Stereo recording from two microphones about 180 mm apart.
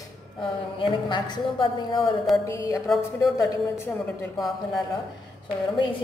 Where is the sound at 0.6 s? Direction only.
25° left (ahead or behind).